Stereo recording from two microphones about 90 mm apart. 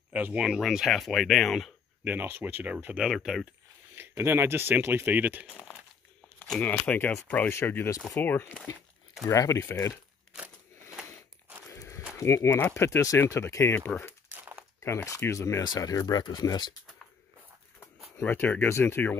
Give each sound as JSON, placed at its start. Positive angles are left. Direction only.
{"t": 0.1, "sound": "speech", "side_deg": -15}
{"t": 0.5, "sound": "speech", "side_deg": 0}
{"t": 2.2, "sound": "speech", "side_deg": -25}
{"t": 3.1, "sound": "speech", "side_deg": 0}
{"t": 3.9, "sound": "speech", "side_deg": -25}
{"t": 6.6, "sound": "speech", "side_deg": 20}
{"t": 9.2, "sound": "speech", "side_deg": 40}
{"t": 10.3, "sound": "a sound", "side_deg": -10}
{"t": 11.7, "sound": "livestock", "side_deg": 35}
{"t": 12.2, "sound": "speech", "side_deg": 35}
{"t": 14.3, "sound": "crumpling", "side_deg": -25}
{"t": 15.0, "sound": "speech", "side_deg": 35}
{"t": 15.6, "sound": "speech", "side_deg": 45}
{"t": 18.2, "sound": "speech", "side_deg": 20}